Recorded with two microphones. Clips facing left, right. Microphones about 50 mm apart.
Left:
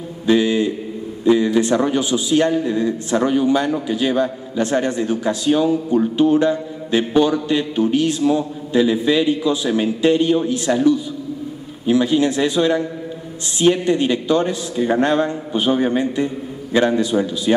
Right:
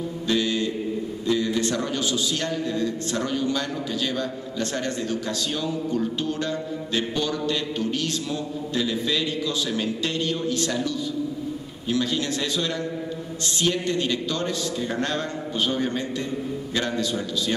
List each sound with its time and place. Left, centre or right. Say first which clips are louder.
0.3 s mantra: left 9 dB; centre
1.2 s a man's voice: left 9 dB; left